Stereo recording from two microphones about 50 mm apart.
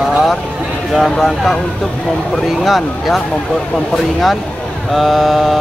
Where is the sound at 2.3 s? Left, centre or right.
Centre.